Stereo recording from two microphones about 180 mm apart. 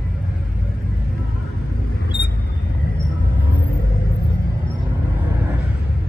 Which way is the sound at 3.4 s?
10° right (ahead or behind).